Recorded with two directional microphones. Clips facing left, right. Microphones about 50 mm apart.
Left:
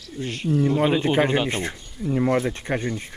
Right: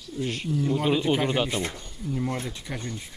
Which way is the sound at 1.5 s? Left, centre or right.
Left.